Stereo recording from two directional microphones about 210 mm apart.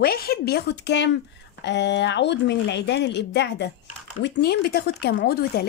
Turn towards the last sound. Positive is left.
turn(degrees=50)  # may be behind; listen again after turning